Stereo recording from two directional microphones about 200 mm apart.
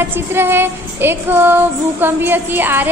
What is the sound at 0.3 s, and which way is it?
A woman's voice, 10° right (ahead or behind).